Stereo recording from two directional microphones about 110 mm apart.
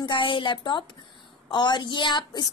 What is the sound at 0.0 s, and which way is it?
A woman's voice, 45° left (ahead or behind).